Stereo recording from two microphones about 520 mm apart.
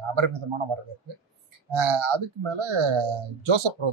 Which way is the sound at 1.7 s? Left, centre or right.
Right.